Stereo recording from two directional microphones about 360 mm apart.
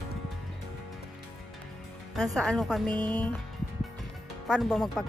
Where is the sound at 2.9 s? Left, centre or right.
Centre.